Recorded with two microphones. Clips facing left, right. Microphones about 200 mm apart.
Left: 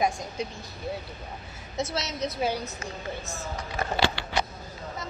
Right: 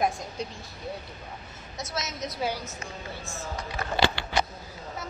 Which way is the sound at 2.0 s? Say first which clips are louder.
Right 1 dB; 30° left (ahead or behind).